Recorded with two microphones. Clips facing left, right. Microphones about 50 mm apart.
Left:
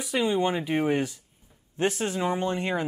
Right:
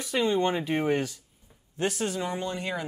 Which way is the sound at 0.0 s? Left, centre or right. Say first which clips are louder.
Even; centre.